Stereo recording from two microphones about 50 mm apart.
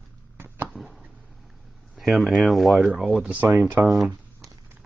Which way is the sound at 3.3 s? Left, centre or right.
Right.